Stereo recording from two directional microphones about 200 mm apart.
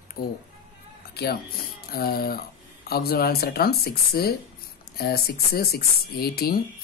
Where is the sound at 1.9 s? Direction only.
50° left (ahead or behind).